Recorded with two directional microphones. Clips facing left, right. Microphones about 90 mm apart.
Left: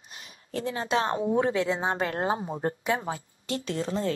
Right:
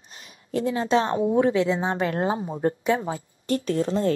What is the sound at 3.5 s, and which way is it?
Speech, 45° right (ahead or behind).